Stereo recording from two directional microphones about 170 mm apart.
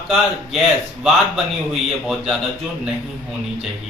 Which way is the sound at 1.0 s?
Centre (ahead or behind).